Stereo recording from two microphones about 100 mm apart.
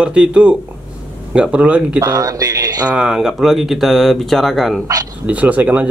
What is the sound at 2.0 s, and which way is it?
Speech, 35° right (ahead or behind).